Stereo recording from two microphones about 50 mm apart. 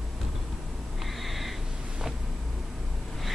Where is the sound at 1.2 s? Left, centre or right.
Centre.